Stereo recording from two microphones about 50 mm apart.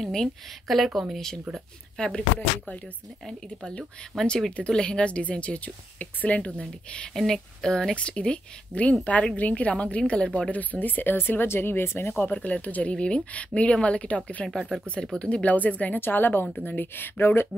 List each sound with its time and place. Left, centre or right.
0.0 s speech: centre
0.7 s a woman's voice: centre
2.0 s speech: centre
4.3 s speech: centre; by 12.4 s left
12.4 s speech: left
15.5 s a woman's voice: left